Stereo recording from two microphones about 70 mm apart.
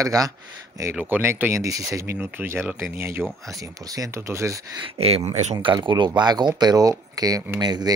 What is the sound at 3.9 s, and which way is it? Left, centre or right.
Speech, right.